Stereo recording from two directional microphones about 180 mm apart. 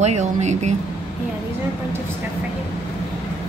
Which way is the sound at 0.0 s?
40° right (ahead or behind).